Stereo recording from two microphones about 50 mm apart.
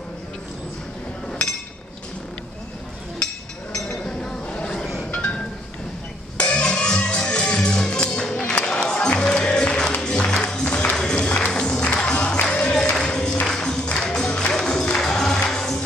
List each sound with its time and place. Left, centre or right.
3.7 s chink: centre
4.7 s chink: centre
5.1 s a sound: left
6.3 s music: left